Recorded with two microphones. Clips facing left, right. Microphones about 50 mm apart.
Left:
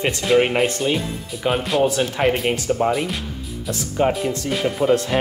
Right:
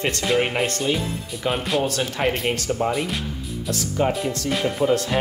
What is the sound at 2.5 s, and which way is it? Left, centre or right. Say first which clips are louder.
Speech: left 3 dB; centre.